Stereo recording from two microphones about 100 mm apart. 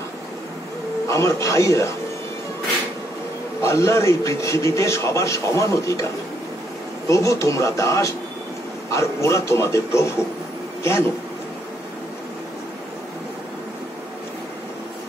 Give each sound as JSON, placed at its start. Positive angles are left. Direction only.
{"t": 1.0, "sound": "a man's voice", "side_deg": 30}
{"t": 3.6, "sound": "a man's voice", "side_deg": 30}
{"t": 7.1, "sound": "a man's voice", "side_deg": 30}